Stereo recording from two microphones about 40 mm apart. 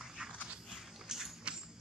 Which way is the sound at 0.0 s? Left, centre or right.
Centre.